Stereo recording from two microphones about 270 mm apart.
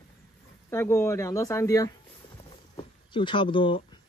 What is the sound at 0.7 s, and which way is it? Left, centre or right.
Speech, centre.